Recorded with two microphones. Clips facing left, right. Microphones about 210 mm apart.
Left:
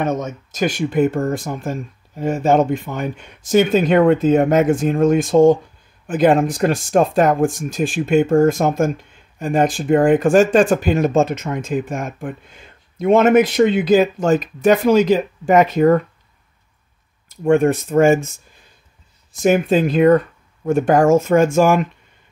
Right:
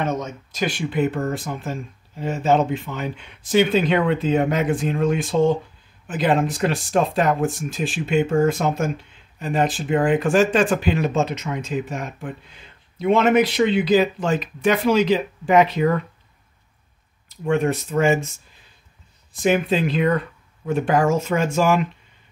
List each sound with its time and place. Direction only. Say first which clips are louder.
0.0 s speech: left 4 dB; 45° left (ahead or behind)
17.5 s speech: left 6 dB; 50° left (ahead or behind)
19.3 s speech: left 4 dB; 45° left (ahead or behind)